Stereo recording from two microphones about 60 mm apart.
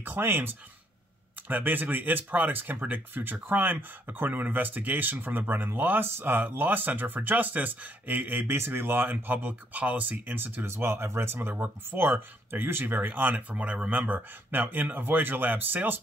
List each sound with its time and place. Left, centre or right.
0.0 s speech: right